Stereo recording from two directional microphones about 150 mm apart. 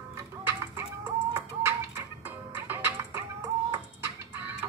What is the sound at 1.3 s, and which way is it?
Music, 15° right (ahead or behind).